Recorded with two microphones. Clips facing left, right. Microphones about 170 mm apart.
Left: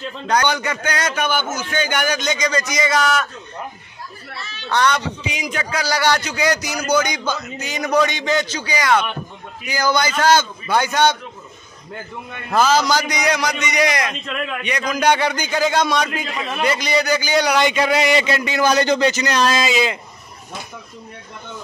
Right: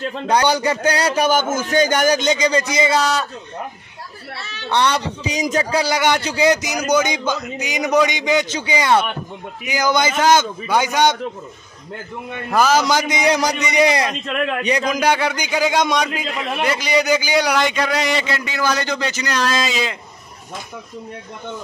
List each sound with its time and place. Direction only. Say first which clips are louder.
0.3 s a man's voice: right 3 dB; 30° right (ahead or behind)
2.1 s a man's voice: right 4 dB; 25° right (ahead or behind)
4.6 s a man's voice: even; 30° right (ahead or behind)
12.5 s a man's voice: even; 10° right (ahead or behind)
12.8 s a man's voice: right 2 dB; 25° right (ahead or behind)
15.0 s a man's voice: left 1 dB; 5° right (ahead or behind)